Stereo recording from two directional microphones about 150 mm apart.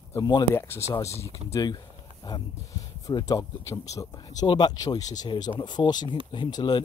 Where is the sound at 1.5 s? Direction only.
25° left (ahead or behind).